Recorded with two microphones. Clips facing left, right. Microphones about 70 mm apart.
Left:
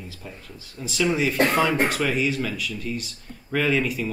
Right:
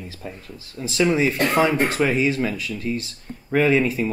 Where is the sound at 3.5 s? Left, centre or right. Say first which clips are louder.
Right 5 dB; right.